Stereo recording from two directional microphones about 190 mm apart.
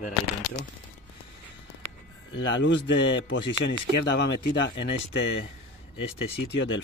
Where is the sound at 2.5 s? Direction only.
70° left (ahead or behind).